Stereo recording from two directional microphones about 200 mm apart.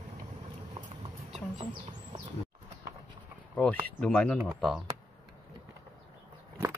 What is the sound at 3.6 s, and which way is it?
Speech, 5° left (ahead or behind).